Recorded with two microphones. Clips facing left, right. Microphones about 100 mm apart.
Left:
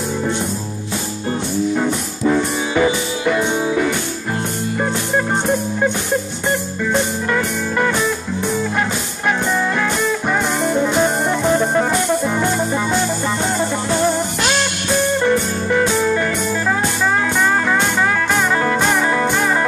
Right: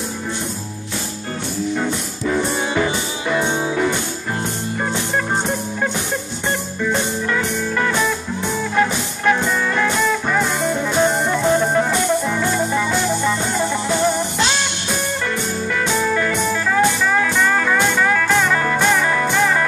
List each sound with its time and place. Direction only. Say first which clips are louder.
1.8 s music: left 3 dB; 5° left (ahead or behind)
6.9 s music: left 2 dB; 5° left (ahead or behind)
10.3 s music: left 1 dB; 15° left (ahead or behind)
18.6 s music: left 1 dB; 20° left (ahead or behind)